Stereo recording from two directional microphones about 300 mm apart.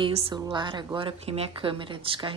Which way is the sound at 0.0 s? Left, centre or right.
Centre.